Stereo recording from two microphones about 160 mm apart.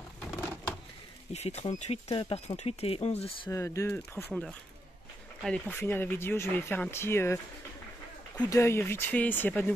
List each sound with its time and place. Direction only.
1.3 s speech: 45° left (ahead or behind)
3.4 s speech: 20° left (ahead or behind)
4.3 s speech: 5° left (ahead or behind)
8.4 s speech: 20° left (ahead or behind)